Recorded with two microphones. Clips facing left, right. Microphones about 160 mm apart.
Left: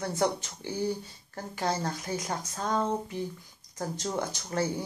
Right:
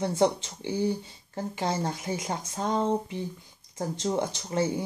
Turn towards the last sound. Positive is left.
turn(degrees=-25)  # may be behind; listen again after turning